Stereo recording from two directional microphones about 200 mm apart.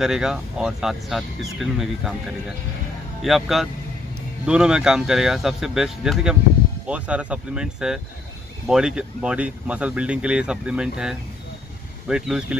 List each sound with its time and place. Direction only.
0.0 s speech: 5° right (ahead or behind)
3.2 s speech: centre (ahead or behind)